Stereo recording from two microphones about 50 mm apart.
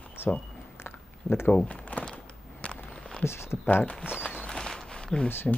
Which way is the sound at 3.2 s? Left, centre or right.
Left.